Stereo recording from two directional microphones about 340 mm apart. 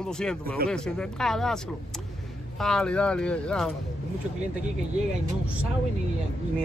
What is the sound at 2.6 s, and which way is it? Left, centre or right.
Speech, centre.